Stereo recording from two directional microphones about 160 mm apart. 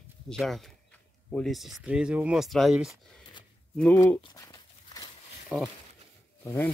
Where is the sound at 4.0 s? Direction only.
20° left (ahead or behind).